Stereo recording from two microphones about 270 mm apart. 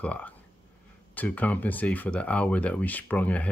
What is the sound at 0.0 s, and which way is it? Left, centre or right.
Speech, centre.